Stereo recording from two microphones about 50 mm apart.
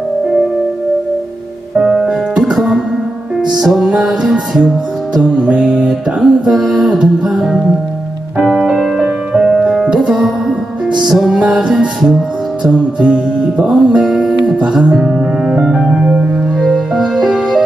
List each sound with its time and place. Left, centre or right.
1.8 s music: centre
8.5 s music: centre
11.3 s music: centre
13.0 s music: centre
14.0 s music: centre
14.4 s music: centre
15.6 s music: centre
15.9 s music: right
16.6 s music: centre